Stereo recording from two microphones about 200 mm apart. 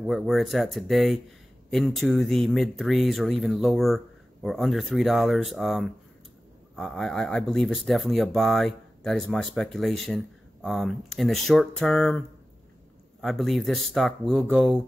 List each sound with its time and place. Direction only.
0.0 s speech: centre (ahead or behind)
13.2 s speech: centre (ahead or behind)